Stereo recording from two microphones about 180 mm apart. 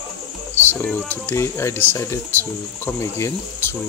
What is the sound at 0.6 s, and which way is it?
Speech, 10° left (ahead or behind).